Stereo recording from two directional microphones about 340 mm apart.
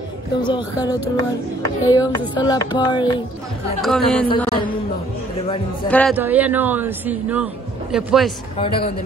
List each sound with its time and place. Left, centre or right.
0.4 s speech: centre
3.8 s speech: centre
4.4 s speech: centre
5.9 s speech: centre
8.5 s speech: centre